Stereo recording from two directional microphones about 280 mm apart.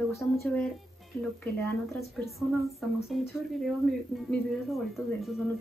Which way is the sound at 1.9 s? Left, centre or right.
Centre.